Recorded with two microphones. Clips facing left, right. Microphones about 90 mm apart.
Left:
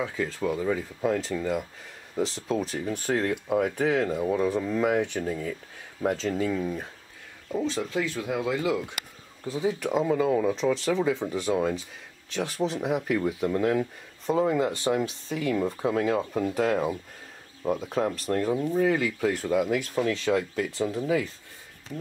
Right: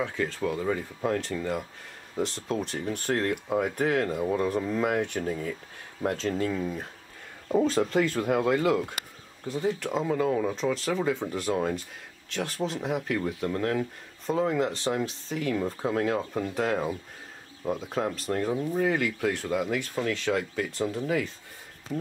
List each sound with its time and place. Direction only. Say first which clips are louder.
0.0 s speech: even; centre (ahead or behind)
8.1 s speech: right 4 dB; 40° right (ahead or behind)
9.4 s speech: left 1 dB; 5° left (ahead or behind)